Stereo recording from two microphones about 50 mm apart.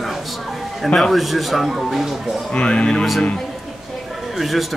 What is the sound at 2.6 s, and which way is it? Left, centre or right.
Speech, centre.